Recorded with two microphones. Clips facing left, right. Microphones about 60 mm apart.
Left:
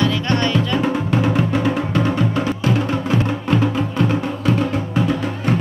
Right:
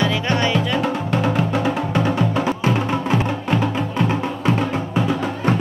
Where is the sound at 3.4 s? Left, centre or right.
Centre.